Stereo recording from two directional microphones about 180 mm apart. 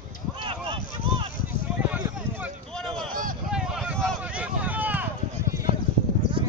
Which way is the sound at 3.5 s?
5° right (ahead or behind).